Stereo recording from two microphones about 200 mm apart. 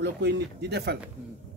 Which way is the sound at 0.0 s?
55° right (ahead or behind).